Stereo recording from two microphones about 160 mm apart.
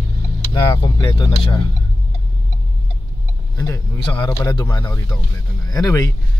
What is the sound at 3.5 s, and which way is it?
A man's voice, 25° left (ahead or behind).